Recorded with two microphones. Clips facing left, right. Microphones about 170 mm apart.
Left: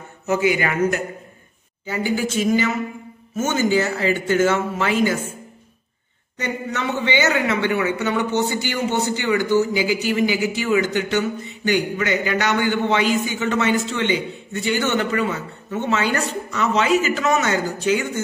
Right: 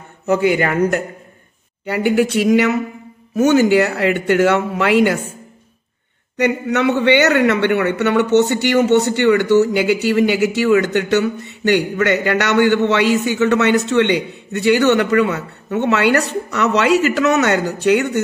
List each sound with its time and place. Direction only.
0.3 s a man's voice: 55° right (ahead or behind)
1.9 s a man's voice: 65° right (ahead or behind)
6.3 s a man's voice: 65° right (ahead or behind)